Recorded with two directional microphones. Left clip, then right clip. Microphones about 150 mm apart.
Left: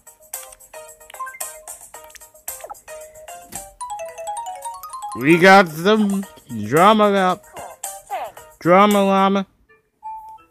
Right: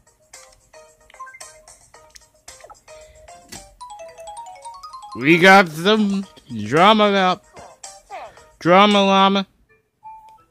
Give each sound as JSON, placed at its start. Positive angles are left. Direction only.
{"t": 0.3, "sound": "music", "side_deg": 35}
{"t": 5.1, "sound": "speech", "side_deg": 0}
{"t": 7.5, "sound": "music", "side_deg": 40}
{"t": 8.5, "sound": "speech", "side_deg": -5}